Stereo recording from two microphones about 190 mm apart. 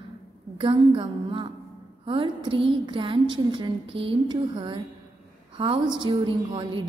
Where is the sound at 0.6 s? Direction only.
25° right (ahead or behind).